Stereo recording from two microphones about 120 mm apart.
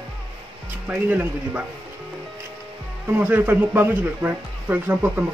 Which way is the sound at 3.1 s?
15° right (ahead or behind).